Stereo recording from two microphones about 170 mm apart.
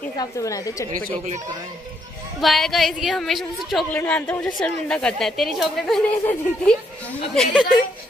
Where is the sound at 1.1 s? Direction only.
40° right (ahead or behind).